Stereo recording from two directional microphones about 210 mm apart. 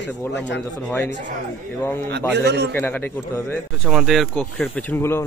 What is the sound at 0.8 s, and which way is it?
Speech, 5° left (ahead or behind).